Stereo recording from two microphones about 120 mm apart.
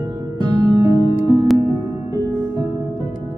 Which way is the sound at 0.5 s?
30° right (ahead or behind).